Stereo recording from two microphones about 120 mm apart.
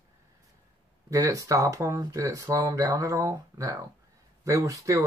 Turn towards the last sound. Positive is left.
turn(degrees=-25)  # may be behind; listen again after turning